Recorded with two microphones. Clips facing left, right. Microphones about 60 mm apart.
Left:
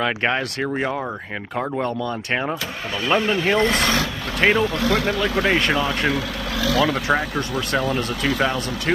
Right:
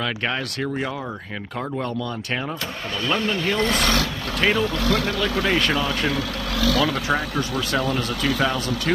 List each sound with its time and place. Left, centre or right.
0.0 s speech: left
3.1 s speech: centre